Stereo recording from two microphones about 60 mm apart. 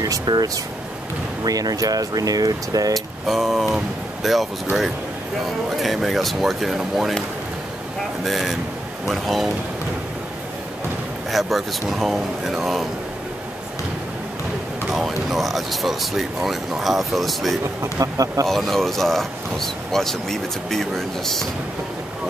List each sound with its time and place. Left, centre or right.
0.0 s speech: right
3.3 s speech: centre
5.8 s speech: centre
8.2 s speech: centre
11.3 s speech: centre
14.9 s speech: centre
17.9 s speech: right
18.5 s speech: centre